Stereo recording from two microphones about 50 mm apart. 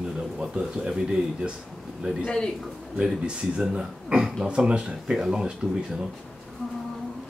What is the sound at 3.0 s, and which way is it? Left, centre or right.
Speech, centre.